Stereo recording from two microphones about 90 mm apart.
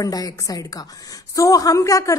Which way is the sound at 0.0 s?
45° left (ahead or behind).